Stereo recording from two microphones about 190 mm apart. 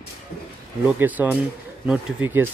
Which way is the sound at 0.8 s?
10° right (ahead or behind).